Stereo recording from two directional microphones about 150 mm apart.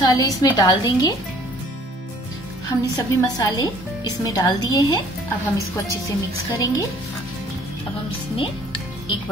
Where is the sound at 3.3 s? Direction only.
25° left (ahead or behind).